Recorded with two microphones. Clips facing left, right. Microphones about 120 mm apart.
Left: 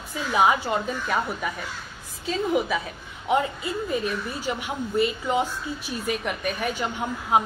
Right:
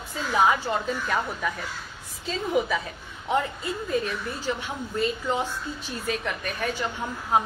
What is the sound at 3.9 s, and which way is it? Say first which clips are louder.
A woman's voice: even; 10° left (ahead or behind).